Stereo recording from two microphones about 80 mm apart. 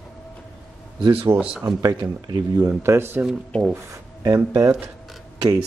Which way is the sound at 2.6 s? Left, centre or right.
Right.